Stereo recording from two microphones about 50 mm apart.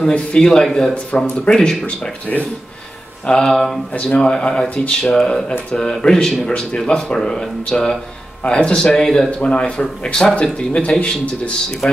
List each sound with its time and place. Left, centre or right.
0.4 s speech: centre
3.3 s speech: centre
3.9 s speech: left
9.4 s speech: centre